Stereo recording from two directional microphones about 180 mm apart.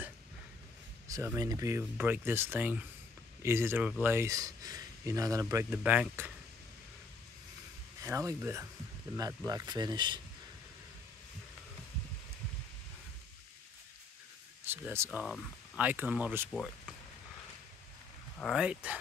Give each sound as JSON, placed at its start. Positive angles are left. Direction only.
{"t": 1.0, "sound": "speech", "side_deg": -15}
{"t": 8.0, "sound": "speech", "side_deg": -15}
{"t": 14.6, "sound": "speech", "side_deg": -10}
{"t": 15.1, "sound": "speech", "side_deg": 0}
{"t": 15.9, "sound": "speech", "side_deg": -10}
{"t": 16.5, "sound": "speech", "side_deg": 5}
{"t": 18.4, "sound": "speech", "side_deg": -5}